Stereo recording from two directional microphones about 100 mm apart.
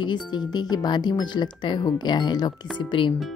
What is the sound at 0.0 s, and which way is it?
Speech, 50° left (ahead or behind).